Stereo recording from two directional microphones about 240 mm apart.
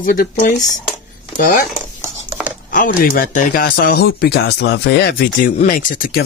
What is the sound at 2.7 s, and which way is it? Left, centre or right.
Speech, left.